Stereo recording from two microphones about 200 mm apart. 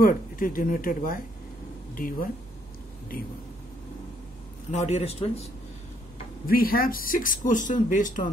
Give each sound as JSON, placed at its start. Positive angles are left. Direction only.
{"t": 0.0, "sound": "speech", "side_deg": 45}
{"t": 4.6, "sound": "a man's voice", "side_deg": 35}
{"t": 6.4, "sound": "speech", "side_deg": 45}